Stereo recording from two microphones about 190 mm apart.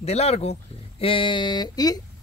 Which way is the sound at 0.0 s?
35° left (ahead or behind).